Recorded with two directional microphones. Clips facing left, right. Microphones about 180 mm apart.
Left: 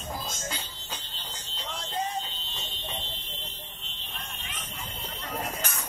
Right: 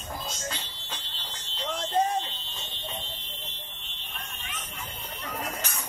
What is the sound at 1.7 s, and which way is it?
Fire alarm, 50° right (ahead or behind).